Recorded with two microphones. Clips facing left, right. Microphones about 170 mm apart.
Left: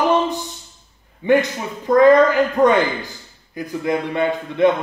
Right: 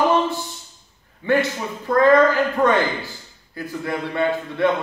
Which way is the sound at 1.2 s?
15° left (ahead or behind).